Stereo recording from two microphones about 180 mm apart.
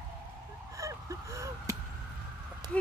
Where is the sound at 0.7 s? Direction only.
15° right (ahead or behind).